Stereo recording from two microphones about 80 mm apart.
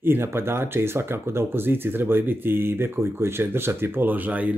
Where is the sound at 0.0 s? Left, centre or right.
Right.